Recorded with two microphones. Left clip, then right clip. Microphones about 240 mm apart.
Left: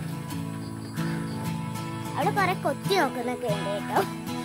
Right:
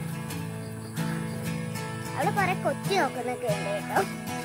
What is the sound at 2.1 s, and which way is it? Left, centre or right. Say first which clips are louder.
Speech: left 1 dB; left.